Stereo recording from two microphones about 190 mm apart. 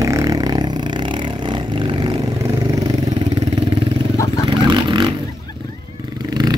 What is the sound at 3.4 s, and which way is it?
Vehicle, 25° right (ahead or behind).